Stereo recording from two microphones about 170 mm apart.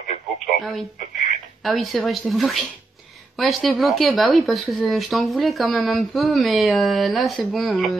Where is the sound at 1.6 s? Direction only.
Centre (ahead or behind).